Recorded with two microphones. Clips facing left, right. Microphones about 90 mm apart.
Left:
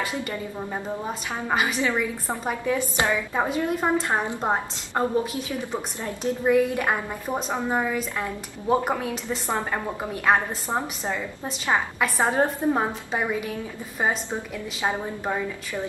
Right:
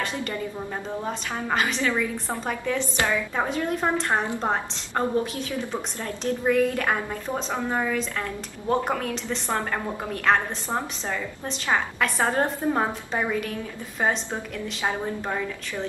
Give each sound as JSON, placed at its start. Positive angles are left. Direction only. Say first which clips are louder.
{"t": 0.0, "sound": "a woman's voice", "louder": "even", "side_deg": 10}